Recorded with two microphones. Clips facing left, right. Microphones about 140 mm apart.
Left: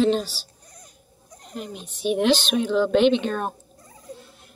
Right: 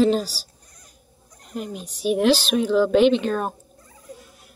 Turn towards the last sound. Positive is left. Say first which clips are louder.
# right 1 dB
turn(degrees=-5)  # may be behind; listen again after turning